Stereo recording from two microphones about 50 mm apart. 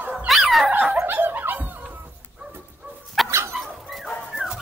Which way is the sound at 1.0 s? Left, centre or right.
Right.